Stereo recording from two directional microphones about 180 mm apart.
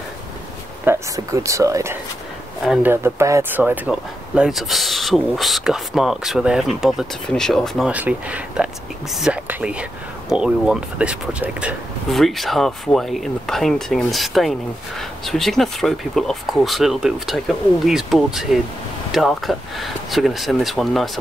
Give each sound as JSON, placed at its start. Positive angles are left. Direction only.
{"t": 0.8, "sound": "speech", "side_deg": -15}
{"t": 2.6, "sound": "speech", "side_deg": -5}
{"t": 2.9, "sound": "speech", "side_deg": -15}